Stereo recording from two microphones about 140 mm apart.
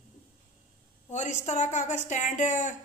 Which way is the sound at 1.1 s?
55° left (ahead or behind).